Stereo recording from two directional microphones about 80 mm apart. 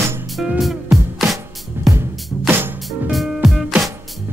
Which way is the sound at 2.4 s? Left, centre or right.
Right.